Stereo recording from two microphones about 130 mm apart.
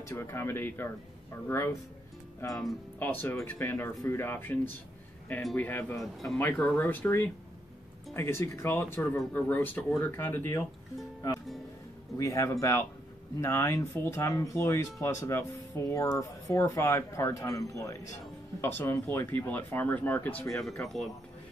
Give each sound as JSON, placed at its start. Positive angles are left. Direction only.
{"t": 0.0, "sound": "speech", "side_deg": 20}
{"t": 3.0, "sound": "speech", "side_deg": 15}
{"t": 12.2, "sound": "speech", "side_deg": 25}
{"t": 20.4, "sound": "speech", "side_deg": 5}